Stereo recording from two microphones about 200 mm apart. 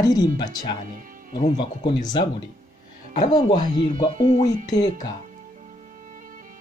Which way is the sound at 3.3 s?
20° left (ahead or behind).